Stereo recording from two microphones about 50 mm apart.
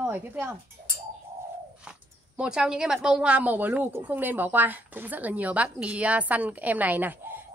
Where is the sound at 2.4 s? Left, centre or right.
Centre.